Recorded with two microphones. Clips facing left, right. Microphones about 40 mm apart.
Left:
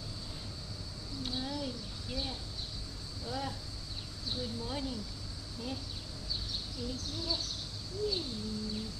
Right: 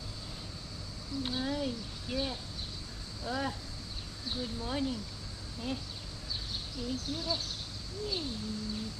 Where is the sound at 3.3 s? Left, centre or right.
Right.